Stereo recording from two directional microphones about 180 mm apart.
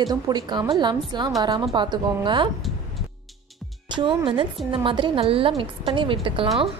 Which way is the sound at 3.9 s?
25° right (ahead or behind).